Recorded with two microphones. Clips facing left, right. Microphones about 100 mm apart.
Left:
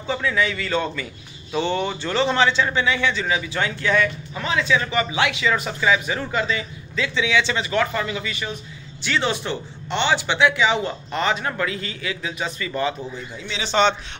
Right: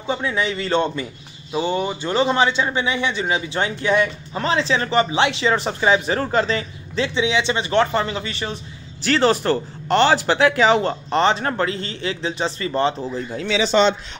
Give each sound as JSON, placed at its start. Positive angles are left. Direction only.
{"t": 0.0, "sound": "a man's voice", "side_deg": -25}
{"t": 1.5, "sound": "a man's voice", "side_deg": -10}
{"t": 4.3, "sound": "speech", "side_deg": -35}
{"t": 7.2, "sound": "a man's voice", "side_deg": -20}